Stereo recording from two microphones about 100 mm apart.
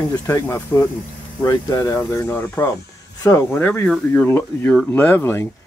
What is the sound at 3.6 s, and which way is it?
Speech, 15° left (ahead or behind).